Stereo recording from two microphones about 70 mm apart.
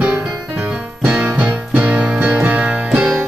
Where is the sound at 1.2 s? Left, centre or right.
Right.